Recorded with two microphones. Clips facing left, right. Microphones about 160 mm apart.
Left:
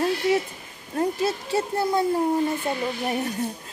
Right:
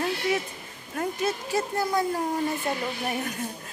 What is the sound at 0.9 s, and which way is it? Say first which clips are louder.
Speech: left 4 dB; 30° left (ahead or behind).